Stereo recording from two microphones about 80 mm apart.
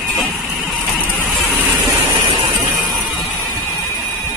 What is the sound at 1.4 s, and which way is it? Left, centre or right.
Vehicle, right.